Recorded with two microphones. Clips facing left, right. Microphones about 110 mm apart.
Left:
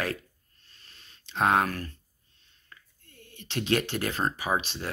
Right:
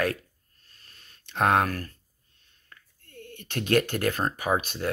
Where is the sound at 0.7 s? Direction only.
45° right (ahead or behind).